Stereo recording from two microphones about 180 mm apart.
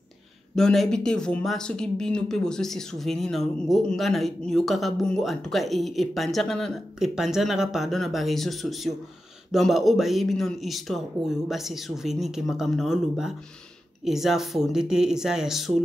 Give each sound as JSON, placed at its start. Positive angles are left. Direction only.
{"t": 0.6, "sound": "speech", "side_deg": 5}